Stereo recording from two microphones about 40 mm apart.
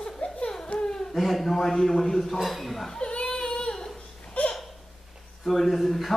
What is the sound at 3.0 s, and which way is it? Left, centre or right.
Child singing, left.